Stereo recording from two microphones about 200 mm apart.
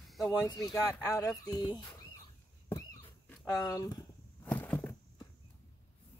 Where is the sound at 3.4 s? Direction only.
20° left (ahead or behind).